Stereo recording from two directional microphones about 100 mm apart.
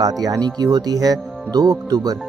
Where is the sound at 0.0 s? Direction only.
40° right (ahead or behind).